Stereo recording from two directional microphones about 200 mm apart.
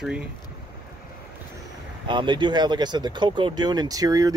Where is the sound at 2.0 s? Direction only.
25° right (ahead or behind).